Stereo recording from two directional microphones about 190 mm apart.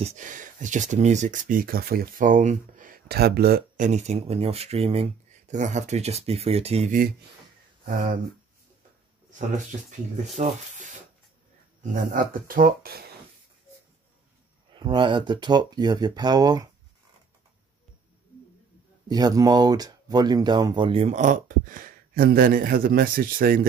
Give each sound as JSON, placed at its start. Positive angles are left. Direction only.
{"t": 0.0, "sound": "speech", "side_deg": -40}
{"t": 9.8, "sound": "speech", "side_deg": -40}
{"t": 14.7, "sound": "speech", "side_deg": -25}
{"t": 19.0, "sound": "speech", "side_deg": -20}